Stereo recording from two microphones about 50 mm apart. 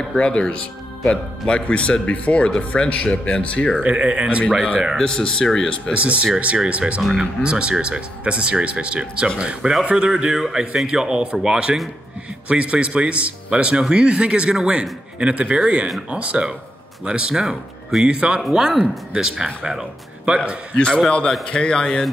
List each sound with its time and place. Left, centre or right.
0.2 s speech: left
3.8 s a man's voice: right
4.9 s speech: centre
5.9 s a man's voice: right
20.7 s speech: left